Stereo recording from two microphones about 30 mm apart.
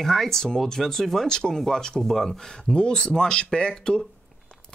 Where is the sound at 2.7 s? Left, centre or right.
Left.